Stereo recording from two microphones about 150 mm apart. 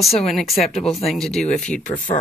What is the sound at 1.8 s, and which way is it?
Speech, 55° left (ahead or behind).